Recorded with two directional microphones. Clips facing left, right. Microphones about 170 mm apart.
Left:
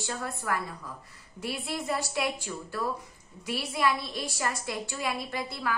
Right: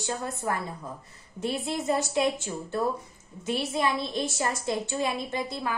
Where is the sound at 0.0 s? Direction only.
20° right (ahead or behind).